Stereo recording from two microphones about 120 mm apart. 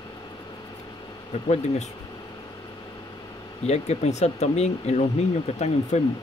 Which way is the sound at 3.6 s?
65° left (ahead or behind).